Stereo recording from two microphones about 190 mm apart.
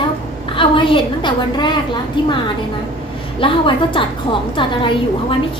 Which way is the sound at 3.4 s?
25° left (ahead or behind).